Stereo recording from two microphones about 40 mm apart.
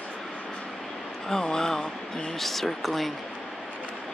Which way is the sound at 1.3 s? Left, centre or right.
Centre.